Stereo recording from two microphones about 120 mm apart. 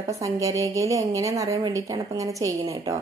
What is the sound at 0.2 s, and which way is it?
A woman's voice, 25° right (ahead or behind).